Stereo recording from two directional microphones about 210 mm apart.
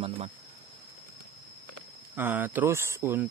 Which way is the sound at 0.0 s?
25° right (ahead or behind).